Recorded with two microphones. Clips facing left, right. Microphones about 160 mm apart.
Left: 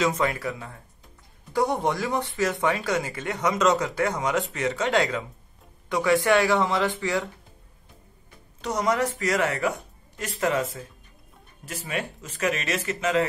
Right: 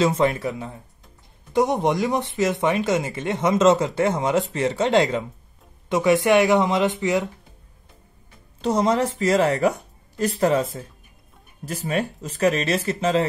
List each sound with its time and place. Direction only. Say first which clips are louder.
0.0 s speech: right 5 dB; 25° right (ahead or behind)
8.5 s a woman's voice: right 5 dB; 30° right (ahead or behind)